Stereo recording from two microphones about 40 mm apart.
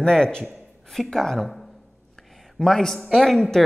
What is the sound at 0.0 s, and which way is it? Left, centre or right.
Speech, left.